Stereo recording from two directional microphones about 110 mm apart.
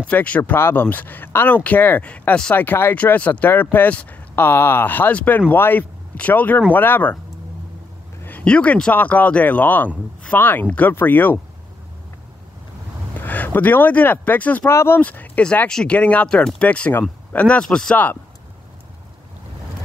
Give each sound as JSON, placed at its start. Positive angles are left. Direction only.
{"t": 0.0, "sound": "speech", "side_deg": 15}
{"t": 8.2, "sound": "speech", "side_deg": 15}
{"t": 13.2, "sound": "speech", "side_deg": 15}
{"t": 15.0, "sound": "speech", "side_deg": 15}